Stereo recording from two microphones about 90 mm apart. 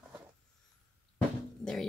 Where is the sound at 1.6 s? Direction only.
10° left (ahead or behind).